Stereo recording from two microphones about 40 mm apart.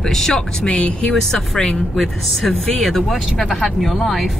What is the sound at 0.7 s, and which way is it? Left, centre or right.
Speech, left.